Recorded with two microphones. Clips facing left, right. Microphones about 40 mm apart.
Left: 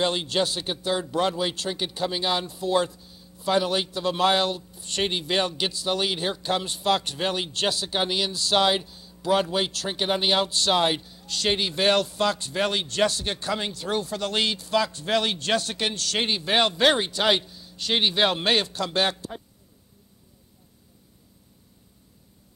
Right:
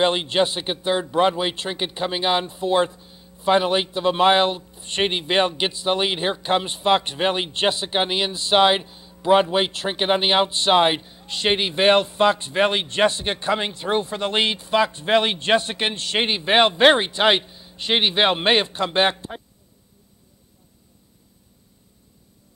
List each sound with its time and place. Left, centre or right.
0.0 s speech: right